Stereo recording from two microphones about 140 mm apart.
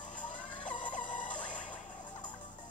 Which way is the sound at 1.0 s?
65° left (ahead or behind).